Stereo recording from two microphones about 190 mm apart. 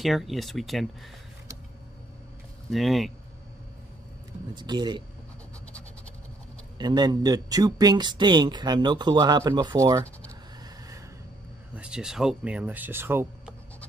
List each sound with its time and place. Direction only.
0.0 s speech: centre (ahead or behind)
2.7 s speech: centre (ahead or behind)
4.6 s speech: 25° right (ahead or behind)
6.8 s speech: 20° right (ahead or behind)
11.7 s speech: 5° right (ahead or behind)